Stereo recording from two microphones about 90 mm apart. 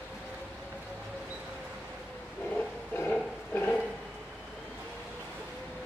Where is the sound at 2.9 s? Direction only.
20° left (ahead or behind).